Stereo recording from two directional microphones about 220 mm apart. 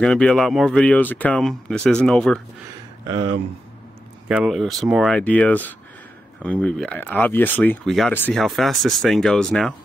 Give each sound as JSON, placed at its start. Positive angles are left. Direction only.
{"t": 0.0, "sound": "speech", "side_deg": 5}
{"t": 4.3, "sound": "speech", "side_deg": -5}